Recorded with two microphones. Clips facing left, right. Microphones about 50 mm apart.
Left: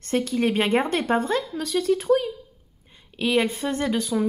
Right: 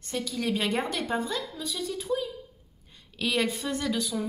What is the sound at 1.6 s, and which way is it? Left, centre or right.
Speech, left.